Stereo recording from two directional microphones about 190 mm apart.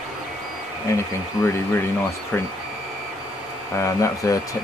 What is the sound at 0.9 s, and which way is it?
Speech, 15° left (ahead or behind).